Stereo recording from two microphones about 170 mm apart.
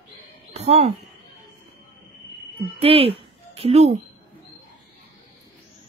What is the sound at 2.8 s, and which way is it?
Speech, 35° right (ahead or behind).